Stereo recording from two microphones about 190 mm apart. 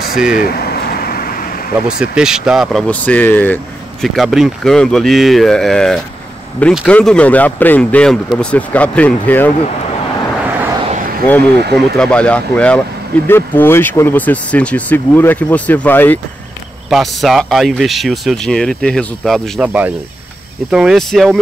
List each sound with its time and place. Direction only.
0.3 s a sound: 50° left (ahead or behind)
1.9 s speech: 5° right (ahead or behind)
11.7 s speech: 5° left (ahead or behind)
16.9 s speech: centre (ahead or behind)